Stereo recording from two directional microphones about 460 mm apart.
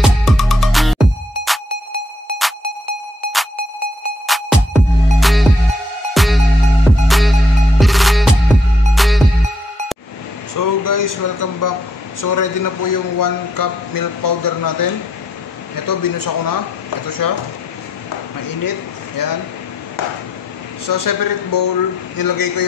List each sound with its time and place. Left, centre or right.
0.0 s music: centre
4.3 s music: centre
10.5 s a sound: left
15.7 s speech: left
18.6 s speech: left
20.8 s speech: left